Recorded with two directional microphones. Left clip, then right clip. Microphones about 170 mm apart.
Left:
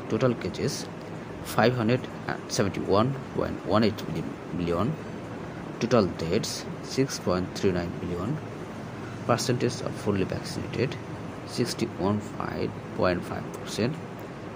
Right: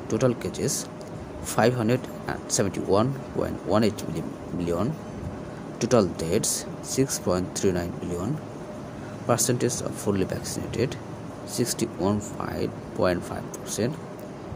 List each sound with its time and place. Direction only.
0.1 s speech: 15° right (ahead or behind)
5.8 s speech: 20° right (ahead or behind)
9.3 s speech: 15° right (ahead or behind)